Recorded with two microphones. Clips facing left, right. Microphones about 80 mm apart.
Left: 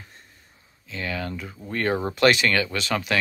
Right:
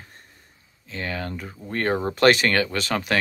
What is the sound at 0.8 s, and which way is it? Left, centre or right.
Speech, right.